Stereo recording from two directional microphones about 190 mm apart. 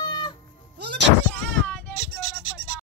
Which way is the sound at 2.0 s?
70° right (ahead or behind).